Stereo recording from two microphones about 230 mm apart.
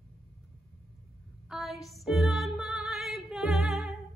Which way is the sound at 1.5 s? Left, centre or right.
Centre.